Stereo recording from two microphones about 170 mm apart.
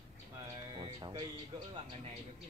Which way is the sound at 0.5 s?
25° right (ahead or behind).